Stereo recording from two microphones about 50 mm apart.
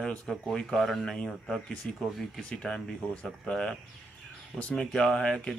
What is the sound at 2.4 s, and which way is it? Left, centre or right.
Speech, centre.